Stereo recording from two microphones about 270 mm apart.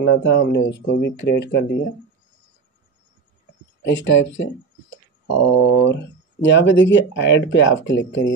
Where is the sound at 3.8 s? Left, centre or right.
Left.